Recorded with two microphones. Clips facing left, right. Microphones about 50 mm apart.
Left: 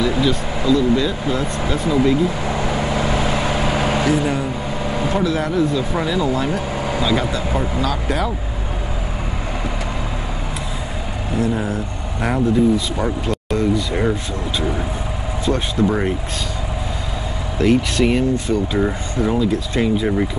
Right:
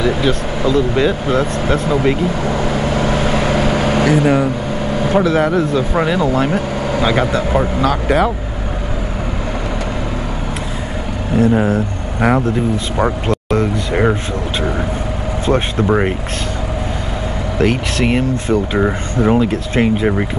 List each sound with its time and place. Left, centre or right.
0.2 s speech: right
4.8 s vehicle: right
5.1 s speech: right
7.1 s speech: right
11.3 s speech: right
15.4 s speech: right
17.6 s speech: right